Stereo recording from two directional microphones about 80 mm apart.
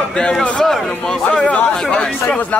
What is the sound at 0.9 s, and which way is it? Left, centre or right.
Speech, left.